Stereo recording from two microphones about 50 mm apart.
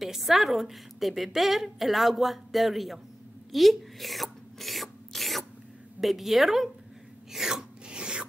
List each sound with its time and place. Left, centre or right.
0.0 s a woman's voice: centre
3.5 s filing: centre
5.9 s a woman's voice: centre
7.3 s filing: centre